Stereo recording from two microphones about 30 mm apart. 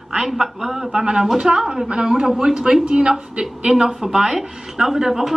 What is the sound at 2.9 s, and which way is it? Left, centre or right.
Speech, right.